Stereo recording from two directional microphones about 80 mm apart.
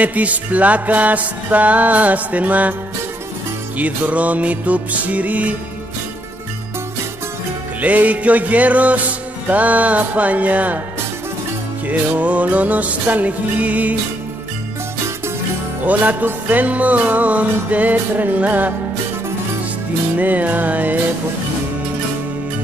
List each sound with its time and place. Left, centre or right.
0.0 s music: centre
3.7 s music: centre
7.8 s music: centre
11.9 s music: centre
15.8 s music: right
20.2 s music: centre